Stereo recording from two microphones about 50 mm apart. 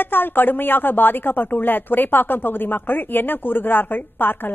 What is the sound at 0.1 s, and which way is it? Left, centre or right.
Speech, left.